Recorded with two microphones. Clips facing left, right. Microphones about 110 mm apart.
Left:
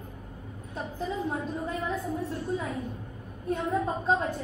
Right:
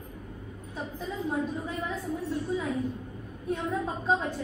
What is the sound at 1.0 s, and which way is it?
Speech, centre (ahead or behind).